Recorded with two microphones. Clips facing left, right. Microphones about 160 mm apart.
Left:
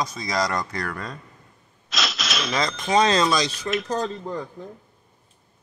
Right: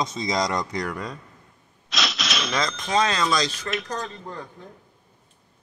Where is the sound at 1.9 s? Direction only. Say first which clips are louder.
Even; centre (ahead or behind).